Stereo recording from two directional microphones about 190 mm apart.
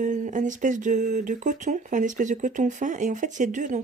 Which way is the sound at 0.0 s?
40° right (ahead or behind).